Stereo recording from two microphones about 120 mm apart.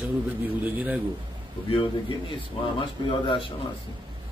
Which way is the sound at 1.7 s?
45° left (ahead or behind).